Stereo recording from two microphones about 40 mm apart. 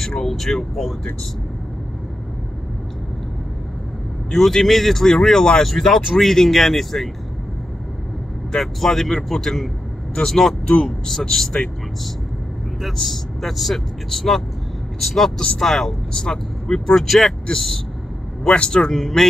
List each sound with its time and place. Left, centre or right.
0.0 s a man's voice: centre
4.3 s a man's voice: centre
8.5 s a man's voice: centre
12.9 s a man's voice: centre
16.2 s a man's voice: centre
18.5 s a man's voice: left
18.9 s speech: centre